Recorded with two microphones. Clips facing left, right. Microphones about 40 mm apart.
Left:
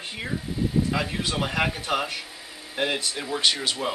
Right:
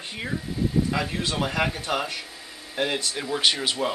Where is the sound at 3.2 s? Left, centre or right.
Centre.